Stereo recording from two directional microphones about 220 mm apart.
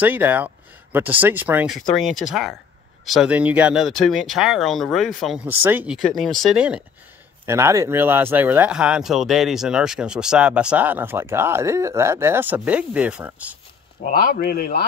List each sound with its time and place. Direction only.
0.0 s speech: 10° right (ahead or behind)
14.0 s speech: 45° left (ahead or behind)